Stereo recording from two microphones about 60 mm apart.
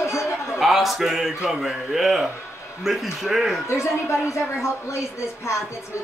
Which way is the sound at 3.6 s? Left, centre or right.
Left.